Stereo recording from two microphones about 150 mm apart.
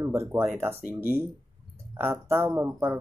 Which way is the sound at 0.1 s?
20° right (ahead or behind).